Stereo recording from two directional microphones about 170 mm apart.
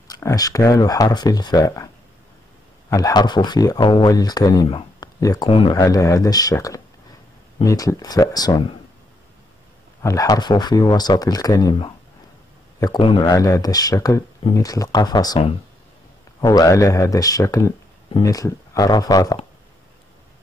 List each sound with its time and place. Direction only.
0.1 s speech: 20° left (ahead or behind)
2.9 s speech: 20° left (ahead or behind)
5.5 s speech: 35° left (ahead or behind)
5.8 s speech: 20° left (ahead or behind)
10.0 s speech: 20° left (ahead or behind)